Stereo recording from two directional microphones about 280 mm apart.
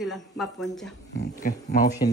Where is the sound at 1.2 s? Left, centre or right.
Left.